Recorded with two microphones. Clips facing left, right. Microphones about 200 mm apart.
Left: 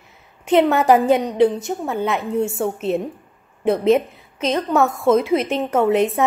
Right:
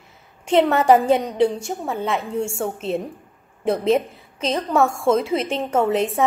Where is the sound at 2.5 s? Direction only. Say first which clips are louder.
Left 3 dB; 30° right (ahead or behind).